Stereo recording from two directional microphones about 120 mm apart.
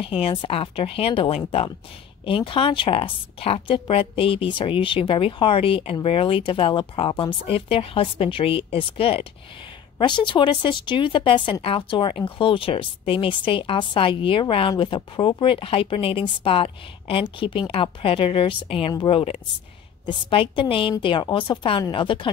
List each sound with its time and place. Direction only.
0.0 s speech: 50° left (ahead or behind)
9.9 s speech: 40° left (ahead or behind)